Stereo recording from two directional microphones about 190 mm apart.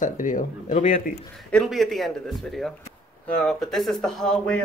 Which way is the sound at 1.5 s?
Centre (ahead or behind).